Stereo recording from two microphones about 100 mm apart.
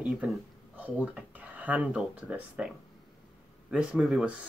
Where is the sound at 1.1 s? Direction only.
15° right (ahead or behind).